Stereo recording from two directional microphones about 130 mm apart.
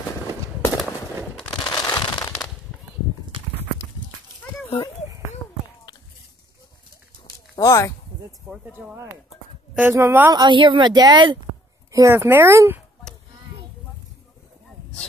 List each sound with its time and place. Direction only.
1.5 s fireworks: 30° left (ahead or behind)
7.5 s speech: 25° left (ahead or behind)
8.5 s a woman's voice: 5° right (ahead or behind)
8.9 s a woman's voice: 20° right (ahead or behind)
10.3 s a woman's voice: 35° right (ahead or behind)
11.9 s speech: 25° right (ahead or behind)